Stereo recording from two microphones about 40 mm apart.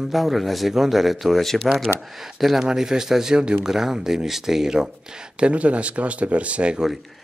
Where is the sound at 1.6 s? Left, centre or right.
Centre.